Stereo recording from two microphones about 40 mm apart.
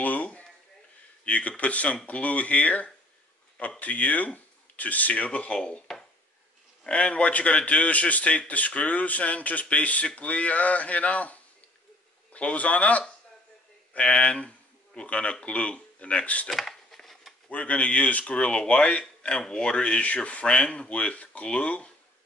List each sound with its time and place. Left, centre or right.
0.0 s a man's voice: left
6.8 s a man's voice: left
16.4 s cutlery: centre
17.5 s a man's voice: left
18.2 s a man's voice: left